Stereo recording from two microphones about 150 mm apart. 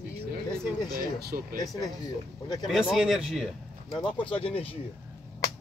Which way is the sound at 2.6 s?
Centre (ahead or behind).